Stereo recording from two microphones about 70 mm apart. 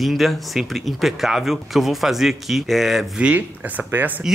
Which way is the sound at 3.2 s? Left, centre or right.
Centre.